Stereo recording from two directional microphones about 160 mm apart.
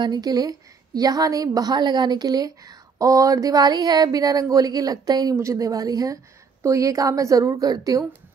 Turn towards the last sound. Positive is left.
turn(degrees=-20)  # may be behind; listen again after turning